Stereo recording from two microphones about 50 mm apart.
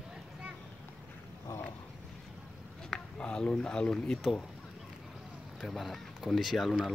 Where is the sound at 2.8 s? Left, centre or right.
Centre.